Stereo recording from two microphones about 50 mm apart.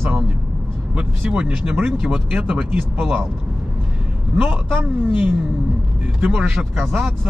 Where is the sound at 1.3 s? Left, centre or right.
Centre.